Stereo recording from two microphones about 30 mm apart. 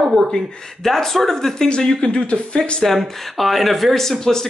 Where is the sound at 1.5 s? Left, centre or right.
Left.